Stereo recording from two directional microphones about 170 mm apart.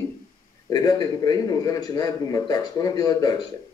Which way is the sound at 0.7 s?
25° left (ahead or behind).